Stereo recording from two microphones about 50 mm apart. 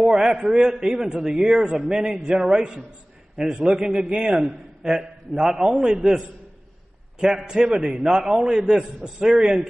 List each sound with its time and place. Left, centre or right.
0.0 s a man's voice: centre
7.4 s a man's voice: centre